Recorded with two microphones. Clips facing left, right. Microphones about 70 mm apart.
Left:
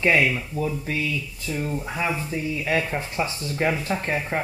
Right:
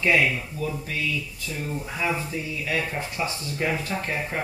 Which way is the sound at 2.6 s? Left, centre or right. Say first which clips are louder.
Left 3 dB; left.